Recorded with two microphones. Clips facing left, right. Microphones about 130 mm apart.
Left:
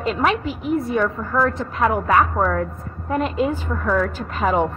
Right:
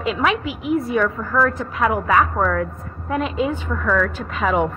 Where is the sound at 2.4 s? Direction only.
25° left (ahead or behind).